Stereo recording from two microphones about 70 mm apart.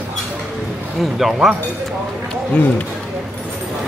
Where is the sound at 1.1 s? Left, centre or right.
Centre.